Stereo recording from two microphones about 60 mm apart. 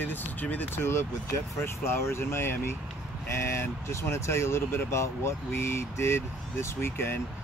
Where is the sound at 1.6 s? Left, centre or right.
Left.